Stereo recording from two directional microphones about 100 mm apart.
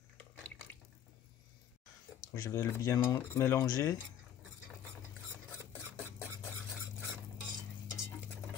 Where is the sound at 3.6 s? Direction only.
40° left (ahead or behind).